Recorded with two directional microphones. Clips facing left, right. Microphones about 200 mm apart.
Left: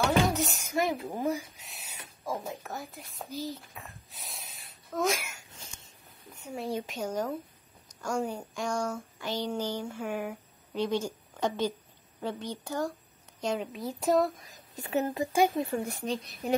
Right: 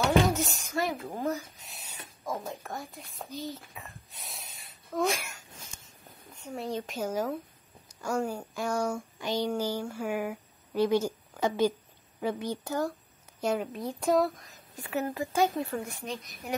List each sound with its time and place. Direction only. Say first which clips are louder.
0.3 s a sound: even; centre (ahead or behind)
1.1 s speech: left 1 dB; 10° left (ahead or behind)
6.3 s speech: even; 5° left (ahead or behind)
7.9 s a sound: right 1 dB; 5° right (ahead or behind)
12.2 s speech: right 4 dB; 10° right (ahead or behind)
14.8 s speech: left 2 dB; 20° left (ahead or behind)
15.8 s speech: left 4 dB; 30° left (ahead or behind)